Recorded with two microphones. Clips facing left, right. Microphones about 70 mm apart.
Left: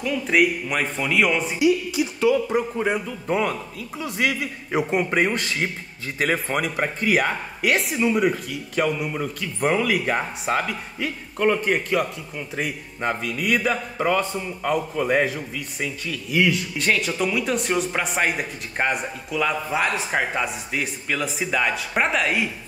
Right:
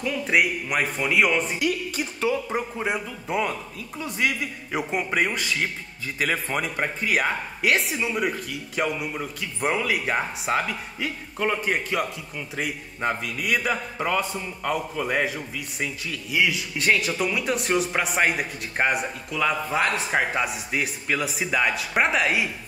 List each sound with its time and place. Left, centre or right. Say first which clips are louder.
0.0 s speech: left 3 dB; centre
1.6 s speech: left 6 dB; right
2.8 s speech: left 4 dB; centre
6.3 s speech: left 3 dB; centre